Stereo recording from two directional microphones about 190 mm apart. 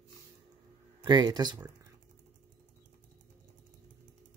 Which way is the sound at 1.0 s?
20° right (ahead or behind).